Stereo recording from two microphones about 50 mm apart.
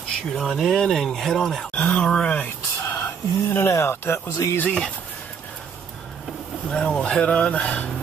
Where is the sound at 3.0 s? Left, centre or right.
Left.